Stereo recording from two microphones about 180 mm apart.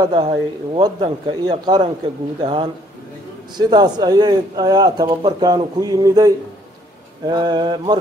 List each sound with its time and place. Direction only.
0.0 s speech: 25° right (ahead or behind)